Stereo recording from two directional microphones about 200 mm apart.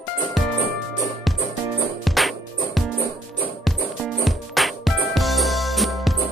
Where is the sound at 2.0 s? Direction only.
Centre (ahead or behind).